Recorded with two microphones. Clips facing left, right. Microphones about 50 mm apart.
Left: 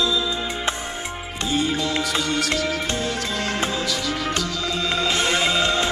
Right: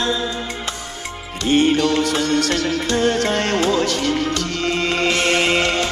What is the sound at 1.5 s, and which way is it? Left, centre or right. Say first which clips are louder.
Music: right 8 dB; right.